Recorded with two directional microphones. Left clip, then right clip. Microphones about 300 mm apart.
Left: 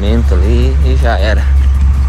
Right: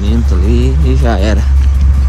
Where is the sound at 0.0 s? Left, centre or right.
Centre.